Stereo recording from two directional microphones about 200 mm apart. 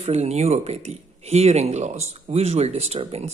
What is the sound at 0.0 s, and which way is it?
A man's voice, 30° right (ahead or behind).